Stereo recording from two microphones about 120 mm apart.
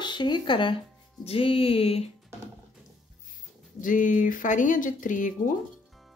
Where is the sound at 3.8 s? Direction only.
90° left.